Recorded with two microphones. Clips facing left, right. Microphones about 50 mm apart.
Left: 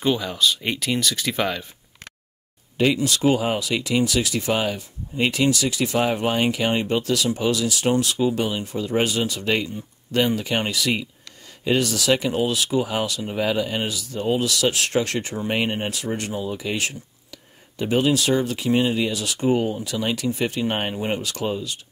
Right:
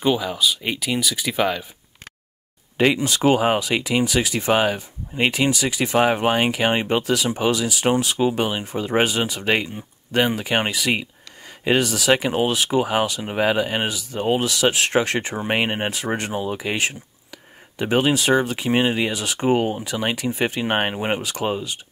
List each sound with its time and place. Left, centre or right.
0.0 s speech: centre
2.8 s speech: right
8.2 s speech: right
21.2 s speech: right
21.5 s speech: right